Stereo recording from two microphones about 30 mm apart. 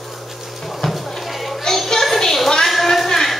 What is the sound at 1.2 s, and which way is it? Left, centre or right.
Children playing, centre.